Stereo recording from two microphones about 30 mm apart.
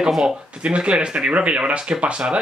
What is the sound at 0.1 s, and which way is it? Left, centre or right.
Speech, centre.